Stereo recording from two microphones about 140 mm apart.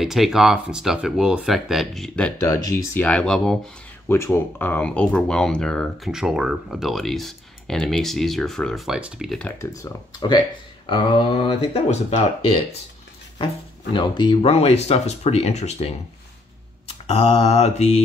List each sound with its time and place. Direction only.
0.0 s speech: centre (ahead or behind)
2.4 s speech: 25° left (ahead or behind); by 3.5 s 5° left (ahead or behind)
4.1 s speech: 20° left (ahead or behind); by 9.4 s 5° right (ahead or behind)
9.6 s speech: 20° left (ahead or behind); by 12.2 s 45° left (ahead or behind)
13.9 s speech: 35° left (ahead or behind); by 15.9 s 50° left (ahead or behind)
16.8 s mantra: 45° left (ahead or behind)